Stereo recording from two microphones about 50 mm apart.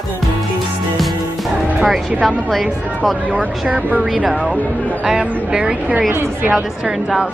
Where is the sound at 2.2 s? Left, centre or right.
Centre.